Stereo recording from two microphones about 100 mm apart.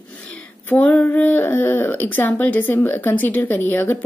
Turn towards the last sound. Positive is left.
turn(degrees=20)  # may be behind; listen again after turning